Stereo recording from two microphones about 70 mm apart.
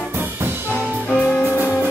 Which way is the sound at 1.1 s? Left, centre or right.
Left.